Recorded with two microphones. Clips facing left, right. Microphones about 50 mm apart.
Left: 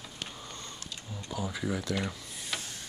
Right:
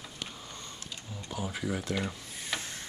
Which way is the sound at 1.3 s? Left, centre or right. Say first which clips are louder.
Left 1 dB; right.